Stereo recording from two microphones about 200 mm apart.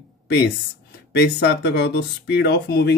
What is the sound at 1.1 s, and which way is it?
Speech, 55° left (ahead or behind).